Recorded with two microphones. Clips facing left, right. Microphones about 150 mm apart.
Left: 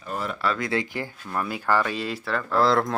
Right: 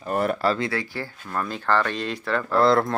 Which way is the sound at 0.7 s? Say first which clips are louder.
Left 2 dB; 20° left (ahead or behind).